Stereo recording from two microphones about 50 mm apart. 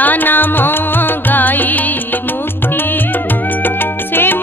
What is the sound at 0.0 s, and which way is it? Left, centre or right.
Music, left.